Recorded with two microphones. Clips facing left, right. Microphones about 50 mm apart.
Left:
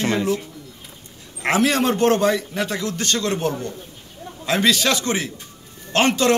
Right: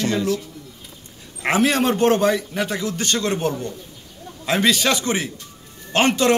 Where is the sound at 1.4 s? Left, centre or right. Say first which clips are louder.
Even; centre.